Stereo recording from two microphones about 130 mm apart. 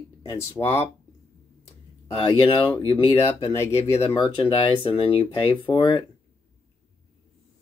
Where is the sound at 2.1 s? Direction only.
40° left (ahead or behind).